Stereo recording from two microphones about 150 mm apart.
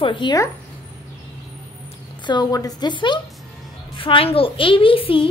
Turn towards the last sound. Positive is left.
turn(degrees=40)  # may be behind; listen again after turning